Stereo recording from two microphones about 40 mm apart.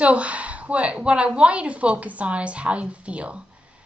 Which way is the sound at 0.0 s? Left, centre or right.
Right.